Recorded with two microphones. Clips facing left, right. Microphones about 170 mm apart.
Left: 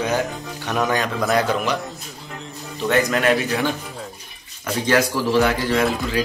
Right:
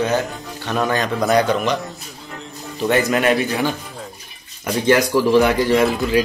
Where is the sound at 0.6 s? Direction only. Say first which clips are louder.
Right 2 dB; centre (ahead or behind).